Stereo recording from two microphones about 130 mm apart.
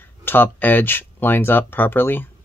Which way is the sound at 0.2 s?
15° left (ahead or behind).